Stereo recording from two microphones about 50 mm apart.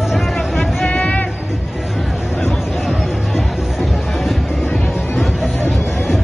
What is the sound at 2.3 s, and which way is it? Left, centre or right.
Music, centre.